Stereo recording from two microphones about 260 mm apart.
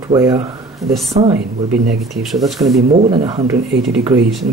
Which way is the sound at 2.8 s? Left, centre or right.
Right.